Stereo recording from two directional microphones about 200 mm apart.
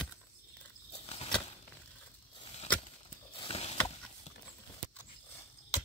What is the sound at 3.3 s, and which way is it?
Mechanisms, 30° left (ahead or behind).